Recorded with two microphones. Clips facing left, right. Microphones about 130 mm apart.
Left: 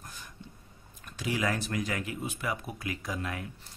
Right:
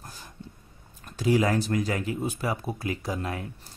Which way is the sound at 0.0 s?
35° right (ahead or behind).